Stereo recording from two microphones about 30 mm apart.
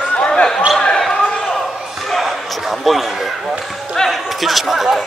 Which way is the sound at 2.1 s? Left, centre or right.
Centre.